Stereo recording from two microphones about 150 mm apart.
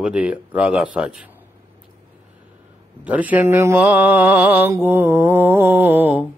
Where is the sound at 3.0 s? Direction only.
10° right (ahead or behind).